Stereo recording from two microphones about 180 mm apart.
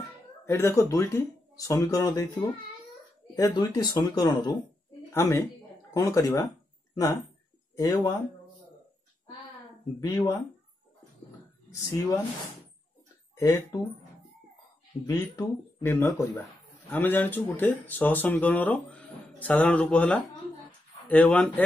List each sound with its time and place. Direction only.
0.5 s a woman's voice: 15° left (ahead or behind)
9.9 s speech: 20° left (ahead or behind)
11.9 s speech: 20° left (ahead or behind)
13.4 s speech: 20° left (ahead or behind)
15.0 s speech: 15° left (ahead or behind)